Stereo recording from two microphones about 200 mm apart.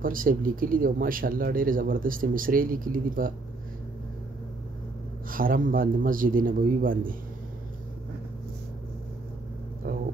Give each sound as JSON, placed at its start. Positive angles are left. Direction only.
{"t": 0.0, "sound": "speech", "side_deg": -45}
{"t": 5.3, "sound": "speech", "side_deg": -45}